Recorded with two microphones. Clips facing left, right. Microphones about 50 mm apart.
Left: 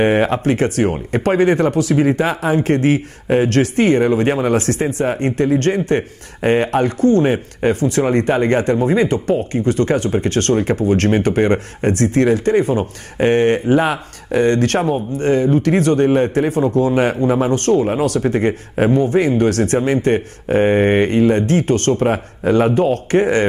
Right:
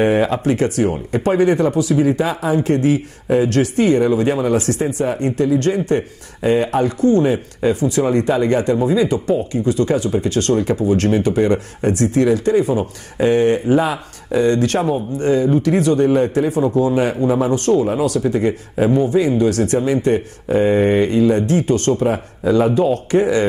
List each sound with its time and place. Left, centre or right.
0.0 s speech: left